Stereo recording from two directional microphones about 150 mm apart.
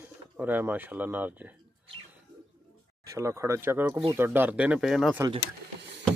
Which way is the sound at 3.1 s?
20° right (ahead or behind).